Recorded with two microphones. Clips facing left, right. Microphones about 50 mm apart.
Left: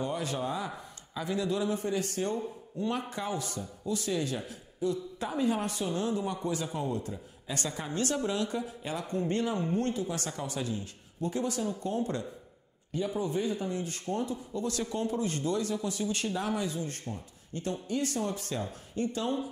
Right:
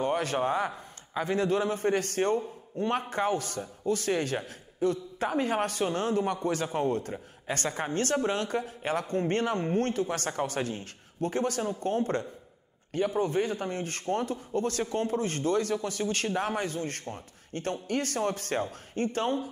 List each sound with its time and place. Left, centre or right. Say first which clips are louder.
0.0 s a man's voice: right 5 dB; right